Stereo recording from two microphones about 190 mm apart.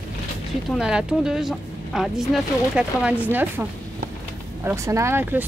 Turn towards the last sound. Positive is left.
turn(degrees=-10)  # may be behind; listen again after turning